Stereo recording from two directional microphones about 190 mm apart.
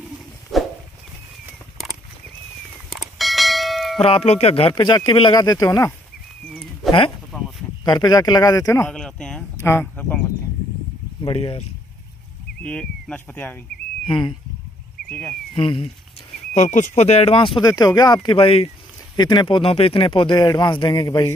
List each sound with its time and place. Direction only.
0.5 s a sound: centre (ahead or behind)
2.9 s bell: centre (ahead or behind)
4.0 s speech: 30° left (ahead or behind)
6.5 s a sound: centre (ahead or behind)
7.8 s speech: 20° left (ahead or behind)
8.9 s a sound: 5° left (ahead or behind)
11.2 s speech: 30° left (ahead or behind)
12.6 s speech: 5° left (ahead or behind)
14.0 s speech: 25° left (ahead or behind)
15.0 s speech: 5° left (ahead or behind)
15.5 s speech: 25° left (ahead or behind)
16.5 s speech: 40° left (ahead or behind)
17.6 s speech: 20° left (ahead or behind)